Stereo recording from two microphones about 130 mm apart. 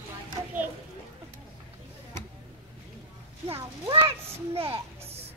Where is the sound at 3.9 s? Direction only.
40° right (ahead or behind).